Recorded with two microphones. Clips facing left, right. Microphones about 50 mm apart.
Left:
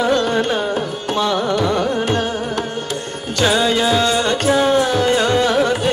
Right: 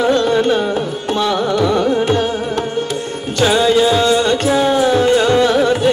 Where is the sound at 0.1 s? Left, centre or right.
Left.